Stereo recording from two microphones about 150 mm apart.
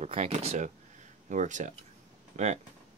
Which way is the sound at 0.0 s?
45° right (ahead or behind).